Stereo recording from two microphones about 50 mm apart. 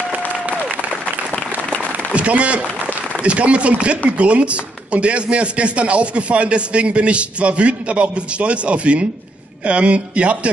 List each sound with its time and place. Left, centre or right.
0.5 s applause: right
2.1 s a man's voice: right